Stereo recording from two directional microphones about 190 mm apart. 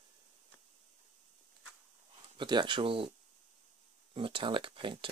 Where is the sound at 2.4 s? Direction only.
25° right (ahead or behind).